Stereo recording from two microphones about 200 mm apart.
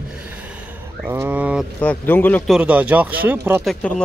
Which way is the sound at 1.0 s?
10° right (ahead or behind).